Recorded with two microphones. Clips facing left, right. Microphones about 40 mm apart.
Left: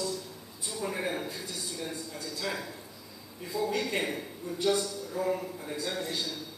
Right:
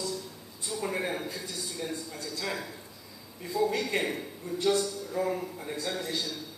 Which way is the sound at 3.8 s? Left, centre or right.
Centre.